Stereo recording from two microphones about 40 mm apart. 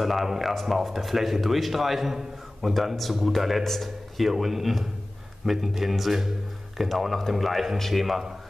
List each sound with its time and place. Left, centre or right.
0.0 s a man's voice: centre